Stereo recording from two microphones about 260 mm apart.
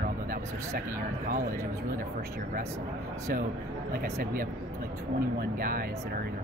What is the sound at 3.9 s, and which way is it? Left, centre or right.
Speech, right.